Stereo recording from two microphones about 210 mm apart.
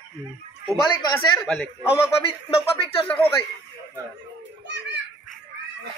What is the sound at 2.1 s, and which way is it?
Speech, 25° left (ahead or behind).